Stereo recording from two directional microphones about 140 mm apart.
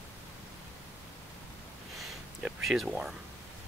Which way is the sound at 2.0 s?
Centre (ahead or behind).